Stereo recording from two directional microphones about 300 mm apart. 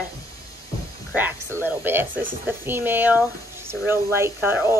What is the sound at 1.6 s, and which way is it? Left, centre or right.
A woman's voice, centre.